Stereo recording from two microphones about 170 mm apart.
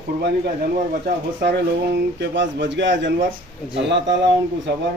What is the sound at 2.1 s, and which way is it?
A man's voice, 90° right.